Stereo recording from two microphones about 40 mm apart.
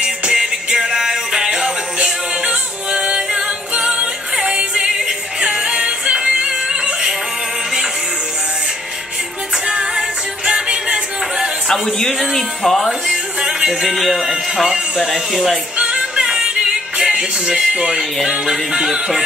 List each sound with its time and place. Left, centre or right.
0.0 s music: centre
9.7 s music: centre
11.6 s a man's voice: centre
14.3 s speech: centre
16.2 s music: centre